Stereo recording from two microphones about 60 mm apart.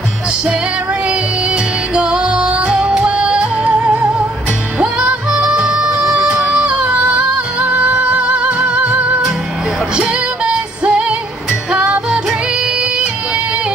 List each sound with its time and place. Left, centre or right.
1.0 s music: centre